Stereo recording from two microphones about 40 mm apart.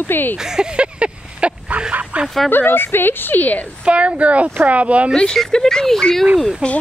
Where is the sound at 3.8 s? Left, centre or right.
Right.